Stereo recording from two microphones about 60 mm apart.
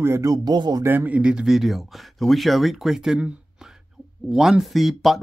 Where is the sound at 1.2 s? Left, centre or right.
Centre.